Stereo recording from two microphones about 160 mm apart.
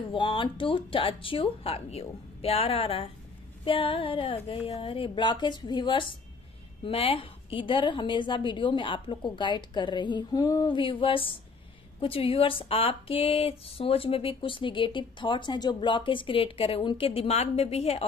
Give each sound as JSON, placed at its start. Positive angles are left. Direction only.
{"t": 0.1, "sound": "a woman's voice", "side_deg": 30}